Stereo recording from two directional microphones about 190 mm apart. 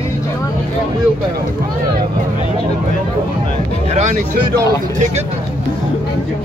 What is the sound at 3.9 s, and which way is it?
Speech, 40° right (ahead or behind).